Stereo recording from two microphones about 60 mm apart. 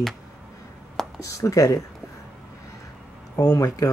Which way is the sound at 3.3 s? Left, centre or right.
Left.